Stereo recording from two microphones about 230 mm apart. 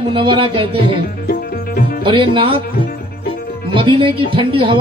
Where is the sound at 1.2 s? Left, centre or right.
Left.